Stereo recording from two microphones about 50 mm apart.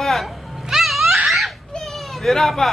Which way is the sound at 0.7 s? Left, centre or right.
Centre.